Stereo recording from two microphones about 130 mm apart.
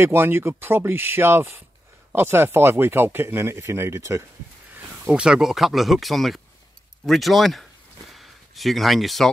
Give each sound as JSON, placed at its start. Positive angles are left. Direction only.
{"t": 0.0, "sound": "speech", "side_deg": -20}
{"t": 5.1, "sound": "speech", "side_deg": -5}
{"t": 8.1, "sound": "a sound", "side_deg": 0}